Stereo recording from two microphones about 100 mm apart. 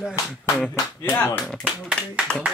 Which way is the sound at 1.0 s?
20° left (ahead or behind).